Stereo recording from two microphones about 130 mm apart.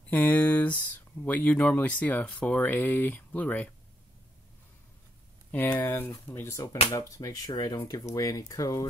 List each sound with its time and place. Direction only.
0.1 s a sound: 15° left (ahead or behind)
1.2 s speech: 10° left (ahead or behind)
5.5 s speech: 15° left (ahead or behind)